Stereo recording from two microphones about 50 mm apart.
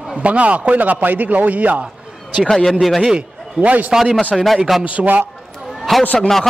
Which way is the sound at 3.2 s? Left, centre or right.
Right.